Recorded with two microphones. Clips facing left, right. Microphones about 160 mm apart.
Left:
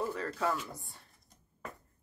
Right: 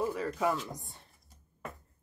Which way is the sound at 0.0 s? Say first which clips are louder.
Right 3 dB; 10° right (ahead or behind).